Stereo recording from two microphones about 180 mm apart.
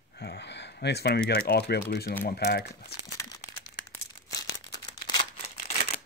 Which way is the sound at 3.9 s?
20° left (ahead or behind).